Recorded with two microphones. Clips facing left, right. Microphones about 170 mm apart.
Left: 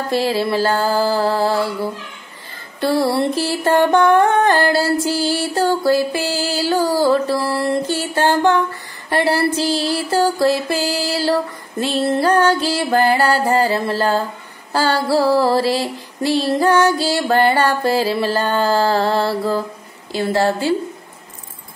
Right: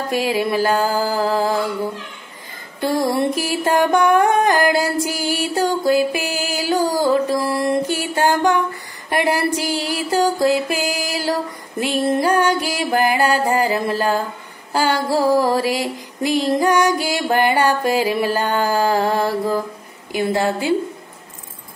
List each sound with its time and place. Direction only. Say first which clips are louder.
0.1 s music: left 1 dB; 15° right (ahead or behind)
2.8 s music: left 2 dB; 15° right (ahead or behind)
14.7 s a sound: left 1 dB; 15° right (ahead or behind)
15.0 s music: left 2 dB; 15° right (ahead or behind)